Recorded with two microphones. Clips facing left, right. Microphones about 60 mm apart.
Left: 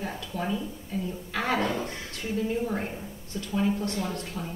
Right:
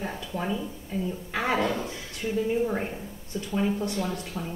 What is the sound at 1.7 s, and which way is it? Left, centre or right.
Speech, left.